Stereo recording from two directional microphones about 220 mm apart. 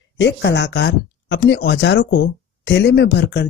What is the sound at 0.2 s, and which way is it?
Speech, 55° left (ahead or behind).